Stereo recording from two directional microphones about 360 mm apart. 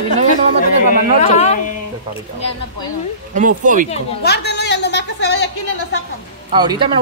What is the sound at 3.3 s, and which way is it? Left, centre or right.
Speech, right.